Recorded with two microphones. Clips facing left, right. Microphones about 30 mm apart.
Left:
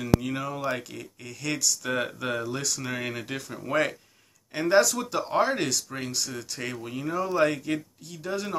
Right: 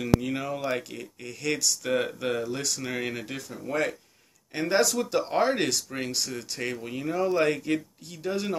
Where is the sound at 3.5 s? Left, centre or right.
Left.